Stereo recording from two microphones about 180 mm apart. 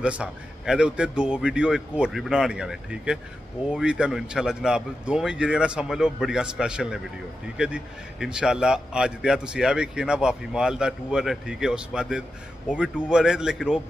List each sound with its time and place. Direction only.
0.0 s a man's voice: 5° right (ahead or behind)